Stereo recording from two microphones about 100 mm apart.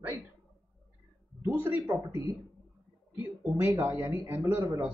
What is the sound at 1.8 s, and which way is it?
Speech, 35° right (ahead or behind).